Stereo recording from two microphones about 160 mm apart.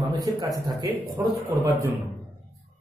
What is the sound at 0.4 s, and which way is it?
A man's voice, 25° right (ahead or behind).